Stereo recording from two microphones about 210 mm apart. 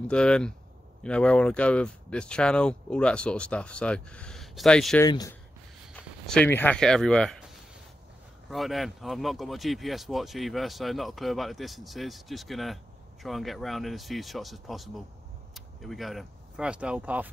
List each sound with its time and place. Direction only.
0.1 s speech: 5° left (ahead or behind)
5.0 s speech: 15° left (ahead or behind)
6.2 s speech: 5° left (ahead or behind)
8.5 s speech: centre (ahead or behind)